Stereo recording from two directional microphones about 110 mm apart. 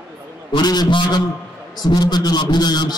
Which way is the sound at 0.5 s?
40° left (ahead or behind).